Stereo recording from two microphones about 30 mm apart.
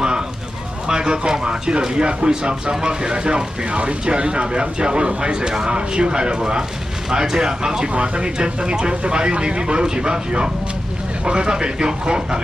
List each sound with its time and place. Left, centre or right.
0.8 s speech: right